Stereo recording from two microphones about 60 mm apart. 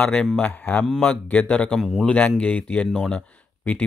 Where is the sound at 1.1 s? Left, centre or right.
Left.